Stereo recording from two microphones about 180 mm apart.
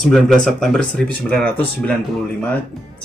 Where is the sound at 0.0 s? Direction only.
Centre (ahead or behind).